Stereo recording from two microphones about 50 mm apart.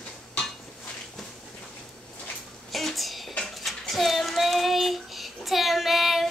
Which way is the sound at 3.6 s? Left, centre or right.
Centre.